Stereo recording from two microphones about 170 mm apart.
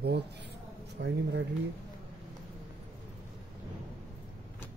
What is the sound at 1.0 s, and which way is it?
Speech, 90° right.